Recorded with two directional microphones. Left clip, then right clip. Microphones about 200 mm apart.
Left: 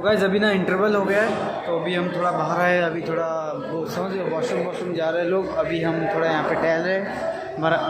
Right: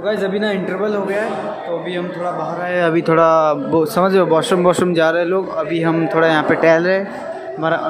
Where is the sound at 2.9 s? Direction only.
30° right (ahead or behind).